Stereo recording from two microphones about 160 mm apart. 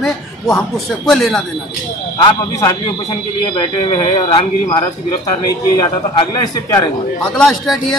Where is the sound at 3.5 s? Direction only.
30° left (ahead or behind).